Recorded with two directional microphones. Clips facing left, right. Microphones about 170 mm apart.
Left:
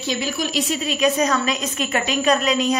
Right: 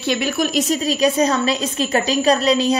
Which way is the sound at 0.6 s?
40° right (ahead or behind).